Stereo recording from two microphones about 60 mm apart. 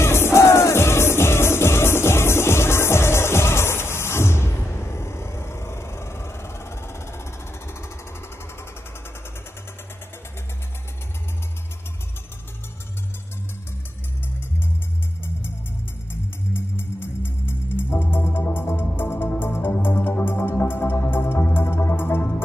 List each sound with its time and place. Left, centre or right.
0.0 s music: left
16.1 s music: left